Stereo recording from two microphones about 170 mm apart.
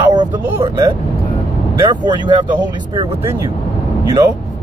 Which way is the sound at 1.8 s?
25° right (ahead or behind).